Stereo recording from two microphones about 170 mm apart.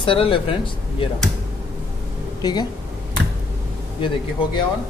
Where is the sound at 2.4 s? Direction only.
25° left (ahead or behind).